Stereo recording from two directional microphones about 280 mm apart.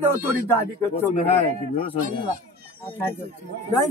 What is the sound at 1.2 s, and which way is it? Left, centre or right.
Speech, left.